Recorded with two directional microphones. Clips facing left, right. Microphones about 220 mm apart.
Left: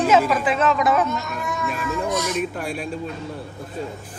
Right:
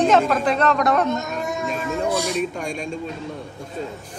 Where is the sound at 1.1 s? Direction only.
45° right (ahead or behind).